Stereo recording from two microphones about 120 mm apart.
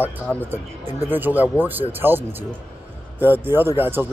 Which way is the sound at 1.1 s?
15° right (ahead or behind).